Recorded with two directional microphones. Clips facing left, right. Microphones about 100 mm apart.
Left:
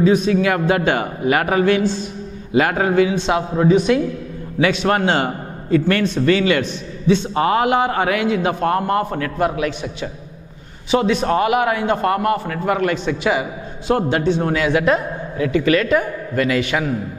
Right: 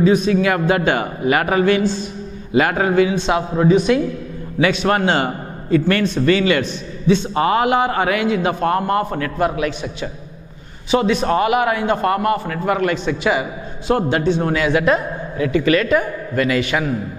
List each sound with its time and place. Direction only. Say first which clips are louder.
0.0 s a man's voice: even; 10° right (ahead or behind)